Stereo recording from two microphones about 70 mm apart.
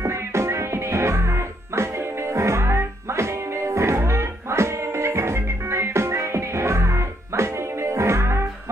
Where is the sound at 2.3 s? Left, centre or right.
Right.